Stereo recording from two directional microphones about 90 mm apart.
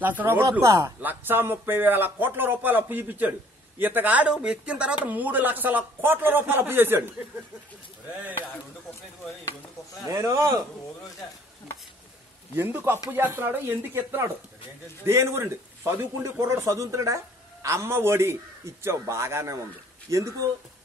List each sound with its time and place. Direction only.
0.0 s speech: 20° right (ahead or behind)
0.6 s a man's voice: 35° right (ahead or behind)
1.0 s speech: 25° right (ahead or behind)
10.0 s a man's voice: 40° right (ahead or behind)
12.5 s a man's voice: 25° right (ahead or behind)